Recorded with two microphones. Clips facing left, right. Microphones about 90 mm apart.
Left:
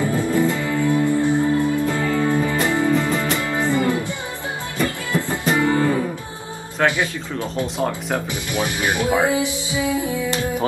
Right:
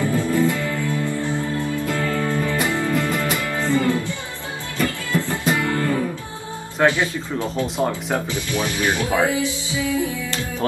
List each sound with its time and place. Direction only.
0.0 s music: 20° left (ahead or behind)
6.8 s speech: 5° right (ahead or behind)
8.3 s speech: 15° left (ahead or behind)